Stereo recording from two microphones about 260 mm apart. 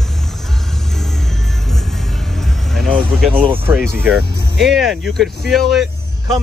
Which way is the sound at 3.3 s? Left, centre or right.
Centre.